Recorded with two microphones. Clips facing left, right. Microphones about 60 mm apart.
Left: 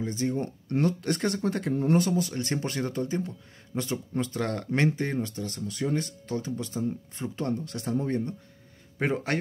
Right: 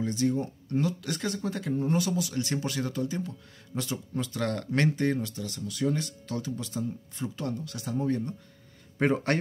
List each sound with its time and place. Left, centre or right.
0.0 s speech: left
0.4 s speech: left
2.0 s speech: left
8.9 s speech: centre